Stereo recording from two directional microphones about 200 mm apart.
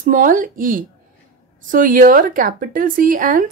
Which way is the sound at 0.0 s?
40° right (ahead or behind).